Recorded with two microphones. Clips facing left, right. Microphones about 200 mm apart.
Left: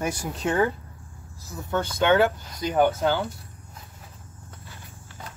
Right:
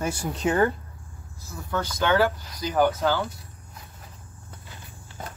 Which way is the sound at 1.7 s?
25° left (ahead or behind).